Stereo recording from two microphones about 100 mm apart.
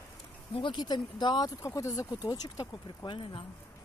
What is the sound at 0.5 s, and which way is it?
Speech, 50° left (ahead or behind).